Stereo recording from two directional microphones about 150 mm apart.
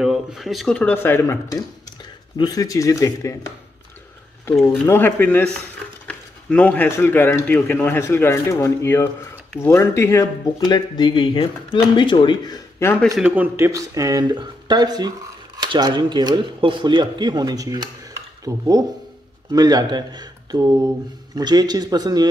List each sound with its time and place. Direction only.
0.0 s speech: 5° right (ahead or behind); by 3.5 s 20° left (ahead or behind)
4.8 s speech: 15° left (ahead or behind); by 12.5 s 30° left (ahead or behind)
12.8 s speech: 20° left (ahead or behind)
13.2 s speech: 10° right (ahead or behind); by 22.3 s 25° right (ahead or behind)